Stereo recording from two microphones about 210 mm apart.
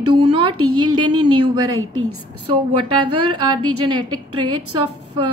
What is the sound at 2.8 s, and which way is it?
Speech, 25° right (ahead or behind).